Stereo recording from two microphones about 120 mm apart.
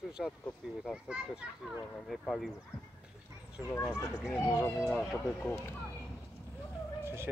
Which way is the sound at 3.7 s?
25° left (ahead or behind).